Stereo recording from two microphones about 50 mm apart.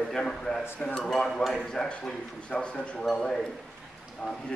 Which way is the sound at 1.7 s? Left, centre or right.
Centre.